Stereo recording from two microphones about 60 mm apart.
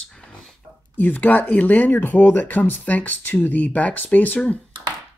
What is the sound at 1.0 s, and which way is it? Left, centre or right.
Speech, left.